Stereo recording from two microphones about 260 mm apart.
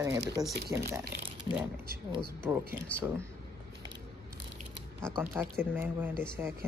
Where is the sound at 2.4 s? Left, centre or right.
Centre.